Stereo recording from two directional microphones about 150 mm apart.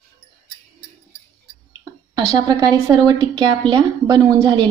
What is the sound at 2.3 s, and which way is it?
A woman's voice, 25° right (ahead or behind).